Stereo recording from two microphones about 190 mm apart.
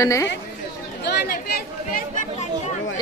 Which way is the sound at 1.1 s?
55° left (ahead or behind).